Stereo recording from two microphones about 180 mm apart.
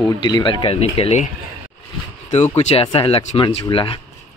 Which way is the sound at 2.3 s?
35° left (ahead or behind).